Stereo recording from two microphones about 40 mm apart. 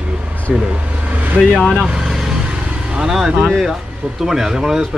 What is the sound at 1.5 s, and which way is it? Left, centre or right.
Speech, centre.